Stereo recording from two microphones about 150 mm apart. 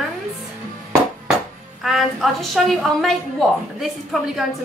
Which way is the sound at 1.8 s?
Centre (ahead or behind).